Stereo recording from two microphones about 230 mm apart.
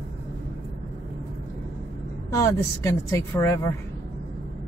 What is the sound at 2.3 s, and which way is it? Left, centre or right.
A woman's voice, centre.